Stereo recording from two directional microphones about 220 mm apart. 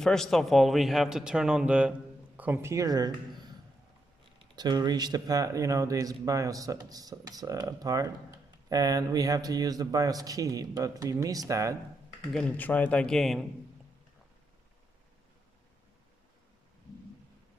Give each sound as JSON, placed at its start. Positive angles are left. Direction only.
{"t": 0.0, "sound": "speech", "side_deg": 0}
{"t": 4.6, "sound": "speech", "side_deg": -20}
{"t": 12.3, "sound": "a man's voice", "side_deg": 5}